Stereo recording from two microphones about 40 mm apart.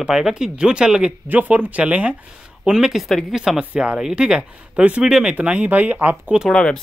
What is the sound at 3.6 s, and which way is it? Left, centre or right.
Speech, right.